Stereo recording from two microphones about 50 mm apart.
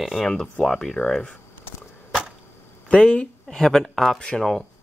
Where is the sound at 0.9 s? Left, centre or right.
Centre.